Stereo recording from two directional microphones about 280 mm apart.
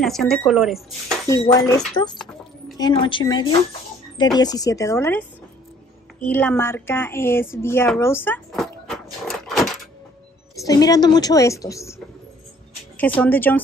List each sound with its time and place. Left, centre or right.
0.0 s speech: centre
1.3 s a woman's voice: centre
10.6 s a woman's voice: centre
12.9 s speech: centre